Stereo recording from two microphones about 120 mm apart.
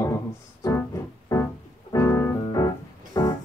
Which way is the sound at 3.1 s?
35° left (ahead or behind).